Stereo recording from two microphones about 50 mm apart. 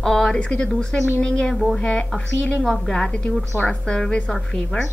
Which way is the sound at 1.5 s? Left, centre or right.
Centre.